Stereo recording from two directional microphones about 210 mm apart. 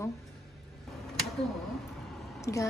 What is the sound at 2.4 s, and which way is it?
Speech, 15° left (ahead or behind).